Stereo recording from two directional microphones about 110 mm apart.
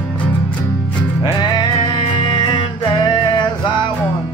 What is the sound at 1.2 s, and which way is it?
Music, 45° left (ahead or behind).